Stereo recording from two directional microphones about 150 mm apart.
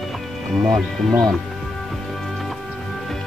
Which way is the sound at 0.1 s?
Centre (ahead or behind).